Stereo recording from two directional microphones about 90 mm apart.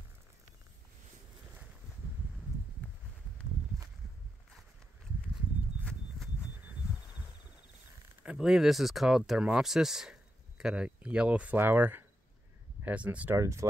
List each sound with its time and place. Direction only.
5.9 s horse: 5° left (ahead or behind)
8.4 s speech: 5° right (ahead or behind)
13.4 s speech: 35° right (ahead or behind)